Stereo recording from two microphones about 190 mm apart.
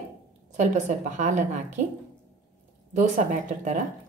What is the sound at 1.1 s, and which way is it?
Speech, 40° right (ahead or behind).